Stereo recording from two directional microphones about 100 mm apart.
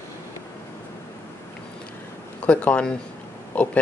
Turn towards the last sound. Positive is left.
turn(degrees=15)  # may be behind; listen again after turning